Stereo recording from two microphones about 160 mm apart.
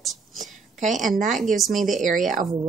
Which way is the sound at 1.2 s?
55° right (ahead or behind).